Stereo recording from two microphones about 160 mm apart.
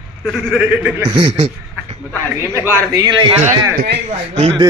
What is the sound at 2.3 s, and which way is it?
Speech, 15° right (ahead or behind).